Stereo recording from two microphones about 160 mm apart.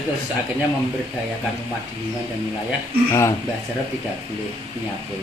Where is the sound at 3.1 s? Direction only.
20° left (ahead or behind).